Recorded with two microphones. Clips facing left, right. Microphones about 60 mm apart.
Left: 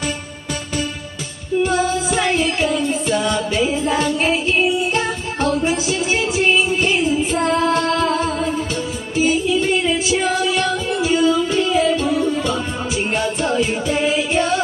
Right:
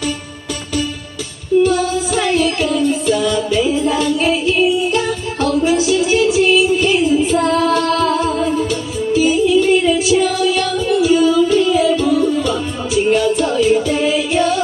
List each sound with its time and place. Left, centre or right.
1.6 s music: left